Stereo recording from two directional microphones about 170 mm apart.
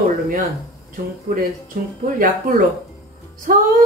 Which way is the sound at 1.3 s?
55° right (ahead or behind).